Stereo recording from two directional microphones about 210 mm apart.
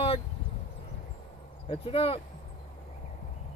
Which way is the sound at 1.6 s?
25° left (ahead or behind).